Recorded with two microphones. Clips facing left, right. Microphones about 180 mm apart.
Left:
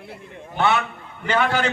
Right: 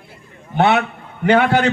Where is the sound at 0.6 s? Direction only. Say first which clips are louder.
Right 5 dB; 65° right (ahead or behind).